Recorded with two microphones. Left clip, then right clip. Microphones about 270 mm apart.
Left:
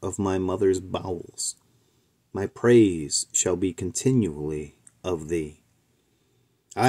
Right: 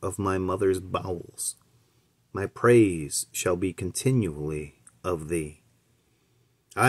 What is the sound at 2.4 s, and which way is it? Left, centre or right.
Speech, centre.